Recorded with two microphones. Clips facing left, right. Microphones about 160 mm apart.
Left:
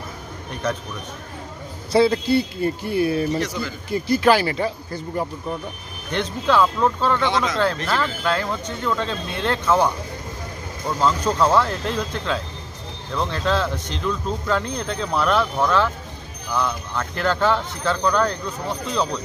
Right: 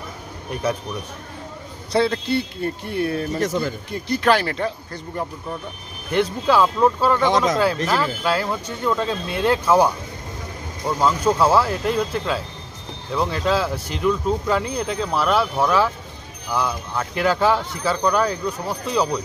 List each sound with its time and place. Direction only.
0.6 s speech: 10° right (ahead or behind)
1.9 s speech: 5° left (ahead or behind)
3.3 s a man's voice: 50° right (ahead or behind)
3.9 s speech: 5° left (ahead or behind)
6.1 s speech: 10° right (ahead or behind)
7.2 s a man's voice: 45° right (ahead or behind)
7.9 s speech: 10° right (ahead or behind)